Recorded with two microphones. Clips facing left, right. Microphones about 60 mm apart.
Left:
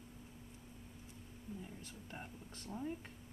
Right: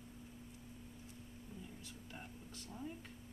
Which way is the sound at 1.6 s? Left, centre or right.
Left.